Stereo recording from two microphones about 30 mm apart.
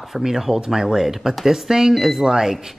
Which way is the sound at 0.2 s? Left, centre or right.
Centre.